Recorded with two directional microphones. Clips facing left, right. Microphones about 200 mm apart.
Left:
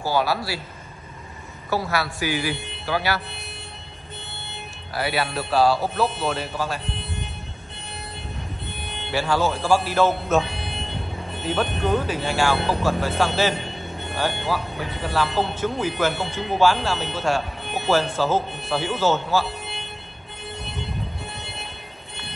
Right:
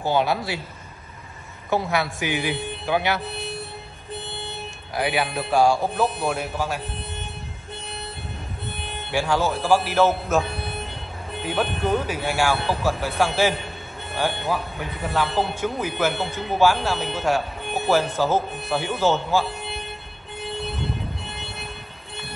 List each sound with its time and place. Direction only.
0.0 s speech: 20° right (ahead or behind)
1.7 s speech: 20° right (ahead or behind)
4.9 s speech: 15° right (ahead or behind)
9.1 s speech: 15° right (ahead or behind)
11.4 s speech: 10° right (ahead or behind)